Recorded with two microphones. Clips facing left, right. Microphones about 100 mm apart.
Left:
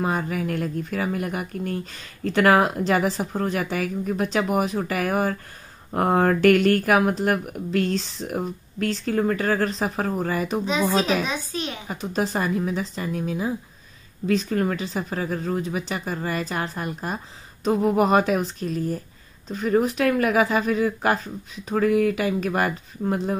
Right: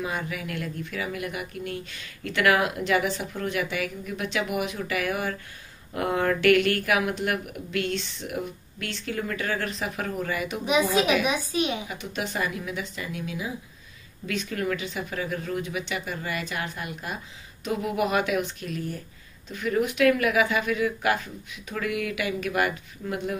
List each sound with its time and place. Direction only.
0.0 s speech: 40° left (ahead or behind)
10.6 s speech: 15° right (ahead or behind)
11.9 s speech: 35° left (ahead or behind)